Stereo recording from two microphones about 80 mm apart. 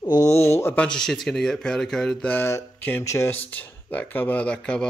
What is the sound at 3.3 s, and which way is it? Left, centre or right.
Speech, left.